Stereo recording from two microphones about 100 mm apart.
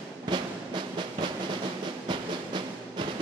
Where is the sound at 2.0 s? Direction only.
50° right (ahead or behind).